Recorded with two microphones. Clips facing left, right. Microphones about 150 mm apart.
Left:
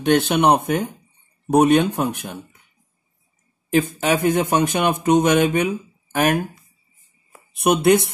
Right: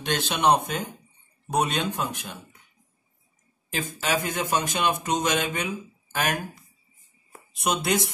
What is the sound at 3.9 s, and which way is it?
Speech, 55° left (ahead or behind).